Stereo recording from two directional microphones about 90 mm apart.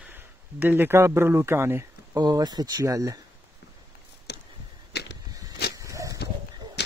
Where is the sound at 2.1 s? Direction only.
45° right (ahead or behind).